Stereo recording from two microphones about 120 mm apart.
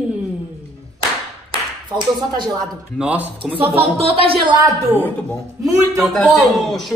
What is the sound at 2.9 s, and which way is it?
Speech, 10° right (ahead or behind).